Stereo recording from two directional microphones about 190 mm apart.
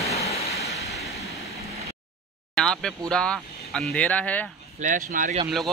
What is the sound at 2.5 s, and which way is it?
Speech, 5° left (ahead or behind).